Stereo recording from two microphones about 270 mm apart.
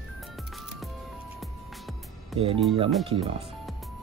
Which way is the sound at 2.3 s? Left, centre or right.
Centre.